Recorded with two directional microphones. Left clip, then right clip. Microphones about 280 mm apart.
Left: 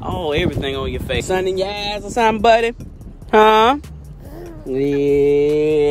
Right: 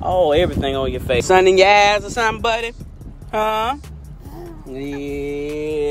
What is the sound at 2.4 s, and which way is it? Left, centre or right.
Speech, left.